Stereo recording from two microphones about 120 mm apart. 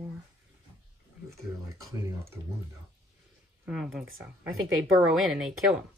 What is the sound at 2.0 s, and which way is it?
Speech, 20° right (ahead or behind).